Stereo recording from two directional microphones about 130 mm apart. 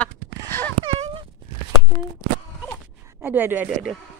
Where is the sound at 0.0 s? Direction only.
15° left (ahead or behind).